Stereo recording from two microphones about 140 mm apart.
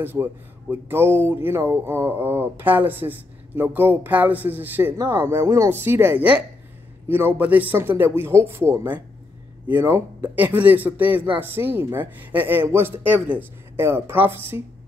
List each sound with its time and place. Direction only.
0.0 s speech: 15° right (ahead or behind)